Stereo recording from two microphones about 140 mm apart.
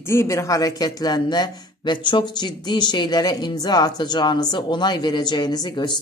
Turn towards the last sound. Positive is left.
turn(degrees=30)  # may be behind; listen again after turning